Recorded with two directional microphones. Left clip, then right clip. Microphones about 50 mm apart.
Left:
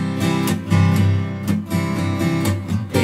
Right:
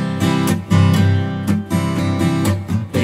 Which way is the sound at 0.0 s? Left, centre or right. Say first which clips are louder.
Right 2 dB; right.